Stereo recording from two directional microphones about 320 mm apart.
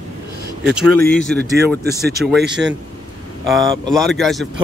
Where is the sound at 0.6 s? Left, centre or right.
Centre.